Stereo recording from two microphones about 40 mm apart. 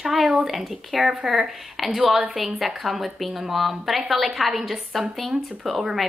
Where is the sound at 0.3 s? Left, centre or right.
Centre.